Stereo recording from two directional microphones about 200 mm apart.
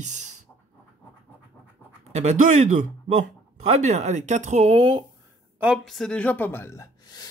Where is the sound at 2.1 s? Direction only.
35° right (ahead or behind).